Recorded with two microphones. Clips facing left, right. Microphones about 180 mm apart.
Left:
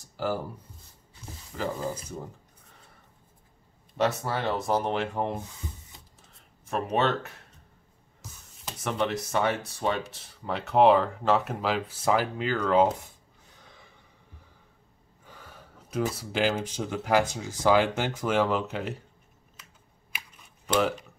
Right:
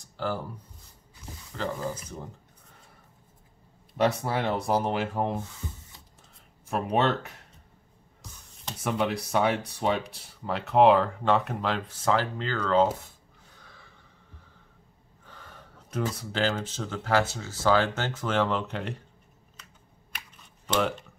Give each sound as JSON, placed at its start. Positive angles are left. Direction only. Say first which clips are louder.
{"t": 0.0, "sound": "a sound", "louder": "left 2 dB", "side_deg": 10}
{"t": 1.6, "sound": "speech", "louder": "left 1 dB", "side_deg": 5}
{"t": 3.9, "sound": "speech", "louder": "right 2 dB", "side_deg": -10}
{"t": 6.7, "sound": "speech", "louder": "right 1 dB", "side_deg": -10}
{"t": 8.8, "sound": "speech", "louder": "right 1 dB", "side_deg": -10}
{"t": 10.4, "sound": "speech", "louder": "right 1 dB", "side_deg": 0}
{"t": 13.7, "sound": "a sound", "louder": "left 2 dB", "side_deg": 20}
{"t": 15.2, "sound": "speech", "louder": "even", "side_deg": 10}
{"t": 20.6, "sound": "speech", "louder": "left 2 dB", "side_deg": 5}